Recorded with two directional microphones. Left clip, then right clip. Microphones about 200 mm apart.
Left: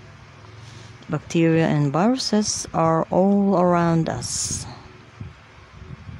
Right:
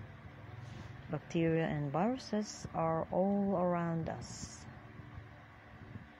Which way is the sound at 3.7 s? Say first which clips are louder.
Left 17 dB; 40° left (ahead or behind).